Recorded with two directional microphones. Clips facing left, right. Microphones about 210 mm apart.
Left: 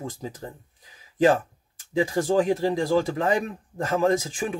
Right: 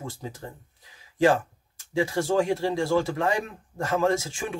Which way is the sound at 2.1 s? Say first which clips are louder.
Left 3 dB; 15° left (ahead or behind).